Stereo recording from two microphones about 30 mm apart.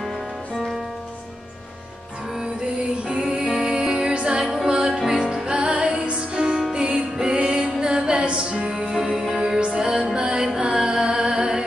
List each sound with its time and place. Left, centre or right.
2.4 s music: right
5.6 s music: right
9.3 s music: centre